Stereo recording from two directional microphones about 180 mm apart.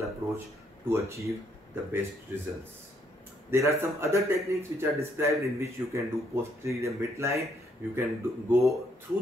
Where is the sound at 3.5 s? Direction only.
15° right (ahead or behind).